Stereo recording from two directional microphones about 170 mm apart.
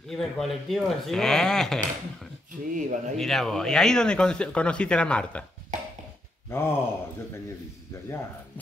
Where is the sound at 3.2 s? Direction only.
Centre (ahead or behind).